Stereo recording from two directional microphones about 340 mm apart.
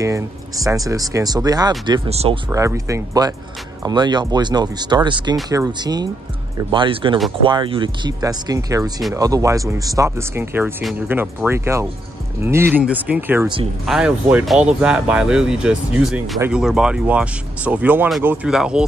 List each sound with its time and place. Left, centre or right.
0.0 s speech: centre